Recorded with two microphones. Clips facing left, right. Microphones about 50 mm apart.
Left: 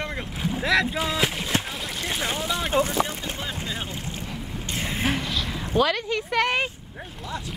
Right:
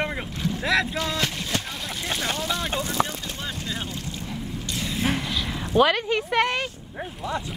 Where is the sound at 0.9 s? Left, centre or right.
Centre.